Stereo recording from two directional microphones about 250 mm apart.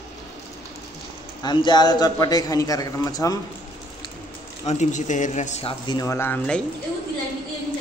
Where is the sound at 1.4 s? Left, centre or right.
Centre.